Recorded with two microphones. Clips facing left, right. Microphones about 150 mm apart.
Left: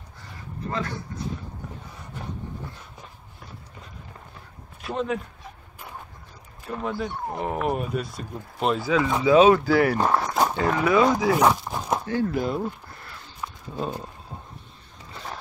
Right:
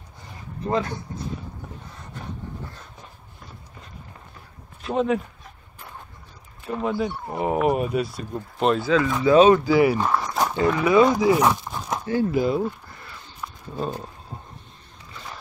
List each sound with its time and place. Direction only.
0.7 s speech: 20° right (ahead or behind)
4.8 s speech: centre (ahead or behind)
6.6 s speech: centre (ahead or behind)
9.9 s speech: 35° left (ahead or behind)
10.4 s dog: centre (ahead or behind)
10.8 s speech: centre (ahead or behind)